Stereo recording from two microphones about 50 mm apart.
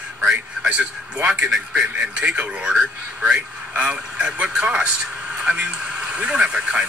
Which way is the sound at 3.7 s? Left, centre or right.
Right.